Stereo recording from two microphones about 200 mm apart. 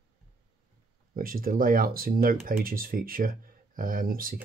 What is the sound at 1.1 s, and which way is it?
Speech, 45° right (ahead or behind).